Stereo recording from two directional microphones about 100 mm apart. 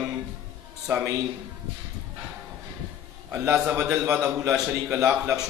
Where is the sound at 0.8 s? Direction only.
20° right (ahead or behind).